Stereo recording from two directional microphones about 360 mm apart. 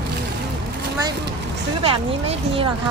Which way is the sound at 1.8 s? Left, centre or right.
Centre.